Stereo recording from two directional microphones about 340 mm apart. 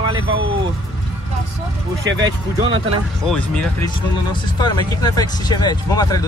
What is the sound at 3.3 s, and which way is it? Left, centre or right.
Speech, centre.